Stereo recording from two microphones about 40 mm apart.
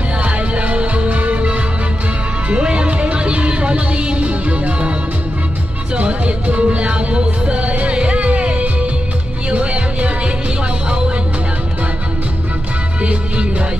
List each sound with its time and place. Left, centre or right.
0.2 s music: right
5.9 s music: right
13.0 s music: right